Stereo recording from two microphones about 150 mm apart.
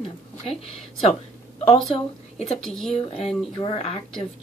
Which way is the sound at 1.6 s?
45° left (ahead or behind).